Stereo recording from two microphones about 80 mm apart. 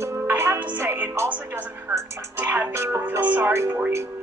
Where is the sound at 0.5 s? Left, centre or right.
Centre.